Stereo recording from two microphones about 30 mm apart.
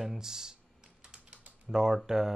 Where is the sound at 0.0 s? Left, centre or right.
Centre.